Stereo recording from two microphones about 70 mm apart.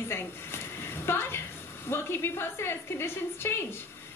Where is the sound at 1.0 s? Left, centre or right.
Left.